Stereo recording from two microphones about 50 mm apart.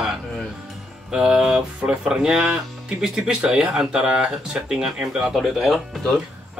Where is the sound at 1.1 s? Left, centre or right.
Centre.